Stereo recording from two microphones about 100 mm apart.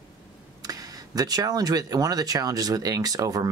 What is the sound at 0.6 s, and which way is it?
Speech, 40° right (ahead or behind).